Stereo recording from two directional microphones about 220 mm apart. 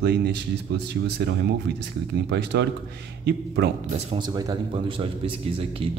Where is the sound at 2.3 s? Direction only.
50° right (ahead or behind).